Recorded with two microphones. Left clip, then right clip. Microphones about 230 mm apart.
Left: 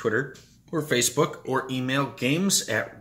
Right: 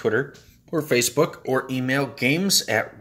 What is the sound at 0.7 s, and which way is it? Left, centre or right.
Speech, centre.